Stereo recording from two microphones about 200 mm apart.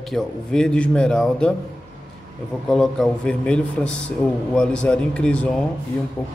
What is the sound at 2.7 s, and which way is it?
A man's voice, centre (ahead or behind).